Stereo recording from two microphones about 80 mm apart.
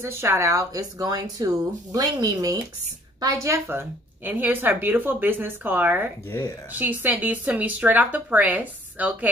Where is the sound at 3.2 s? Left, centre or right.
Right.